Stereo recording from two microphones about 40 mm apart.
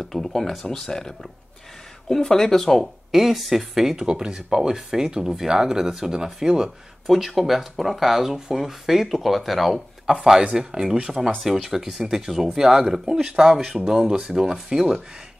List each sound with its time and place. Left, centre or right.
0.1 s speech: centre
3.9 s speech: right
7.1 s speech: centre
10.0 s speech: centre